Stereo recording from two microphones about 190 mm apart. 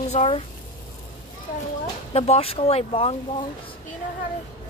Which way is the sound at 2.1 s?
35° left (ahead or behind).